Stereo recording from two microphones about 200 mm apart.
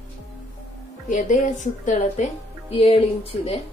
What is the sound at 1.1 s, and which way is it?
A woman's voice, 40° left (ahead or behind).